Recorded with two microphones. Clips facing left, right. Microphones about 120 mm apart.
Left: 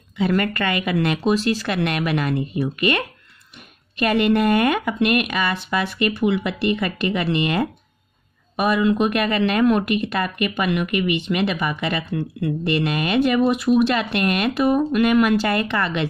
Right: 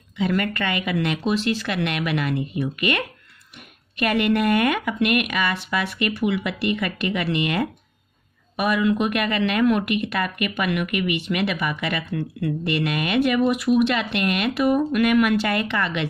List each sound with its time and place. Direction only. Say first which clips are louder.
0.2 s speech: left 2 dB; 40° left (ahead or behind)